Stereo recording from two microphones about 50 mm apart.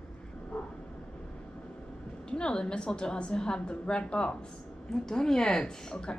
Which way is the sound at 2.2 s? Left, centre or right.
Centre.